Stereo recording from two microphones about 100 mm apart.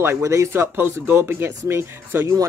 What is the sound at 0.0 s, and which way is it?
Speech, 25° right (ahead or behind).